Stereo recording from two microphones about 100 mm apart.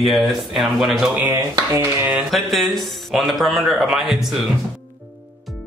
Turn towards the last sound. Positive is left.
turn(degrees=0)  # may be behind; listen again after turning